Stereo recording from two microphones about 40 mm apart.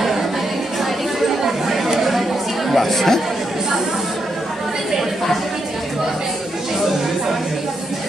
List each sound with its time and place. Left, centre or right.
1.4 s chatter: centre
2.7 s speech: centre